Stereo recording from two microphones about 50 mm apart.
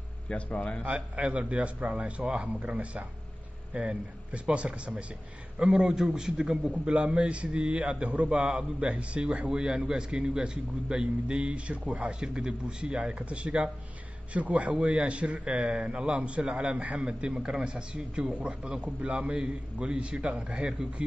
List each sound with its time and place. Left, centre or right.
0.3 s speech: left
0.8 s a man's voice: right
6.7 s a man's voice: right